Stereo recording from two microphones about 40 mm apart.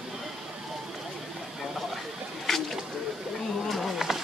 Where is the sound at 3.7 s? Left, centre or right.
Centre.